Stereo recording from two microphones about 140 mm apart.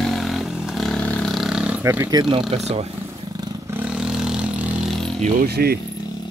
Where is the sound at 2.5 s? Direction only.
50° right (ahead or behind).